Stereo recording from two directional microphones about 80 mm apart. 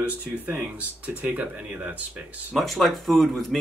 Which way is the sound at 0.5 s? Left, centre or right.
Right.